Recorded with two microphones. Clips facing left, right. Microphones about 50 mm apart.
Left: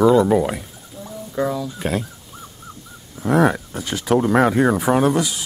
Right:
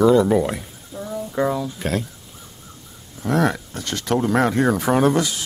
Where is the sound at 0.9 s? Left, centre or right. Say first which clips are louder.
Right 5 dB; right.